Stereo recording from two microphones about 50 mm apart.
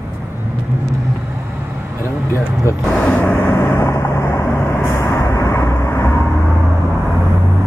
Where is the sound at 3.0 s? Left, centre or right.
Left.